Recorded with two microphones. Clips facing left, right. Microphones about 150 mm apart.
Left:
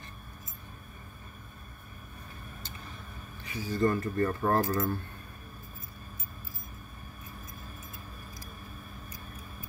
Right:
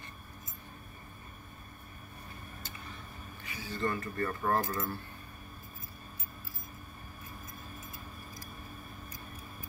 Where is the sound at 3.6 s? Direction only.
40° left (ahead or behind).